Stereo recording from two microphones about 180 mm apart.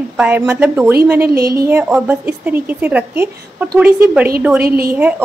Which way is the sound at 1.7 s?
10° right (ahead or behind).